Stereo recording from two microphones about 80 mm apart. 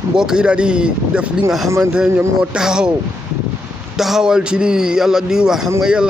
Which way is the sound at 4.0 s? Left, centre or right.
Centre.